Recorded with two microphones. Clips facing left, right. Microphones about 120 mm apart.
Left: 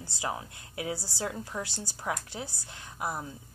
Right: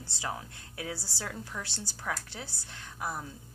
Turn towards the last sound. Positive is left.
turn(degrees=20)  # may be behind; listen again after turning